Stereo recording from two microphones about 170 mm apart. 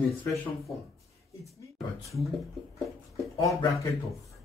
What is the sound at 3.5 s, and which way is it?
Speech, 20° left (ahead or behind).